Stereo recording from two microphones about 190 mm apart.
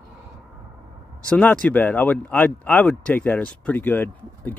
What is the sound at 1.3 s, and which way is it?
Speech, 5° left (ahead or behind).